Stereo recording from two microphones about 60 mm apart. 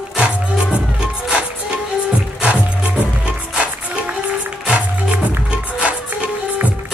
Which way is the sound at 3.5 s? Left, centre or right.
Centre.